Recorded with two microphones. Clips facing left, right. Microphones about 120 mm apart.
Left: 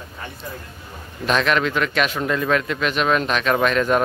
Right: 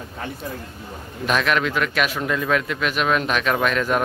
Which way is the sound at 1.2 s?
5° right (ahead or behind).